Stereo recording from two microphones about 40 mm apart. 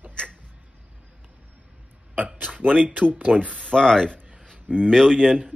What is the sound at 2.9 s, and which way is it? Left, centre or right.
Speech, right.